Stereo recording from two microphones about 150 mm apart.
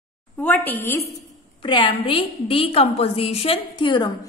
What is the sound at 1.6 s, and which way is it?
A woman's voice, 35° left (ahead or behind).